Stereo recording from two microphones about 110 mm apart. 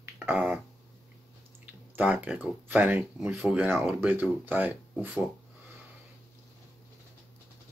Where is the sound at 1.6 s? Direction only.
15° right (ahead or behind).